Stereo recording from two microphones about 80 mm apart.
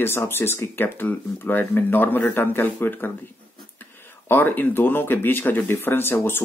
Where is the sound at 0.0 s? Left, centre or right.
Left.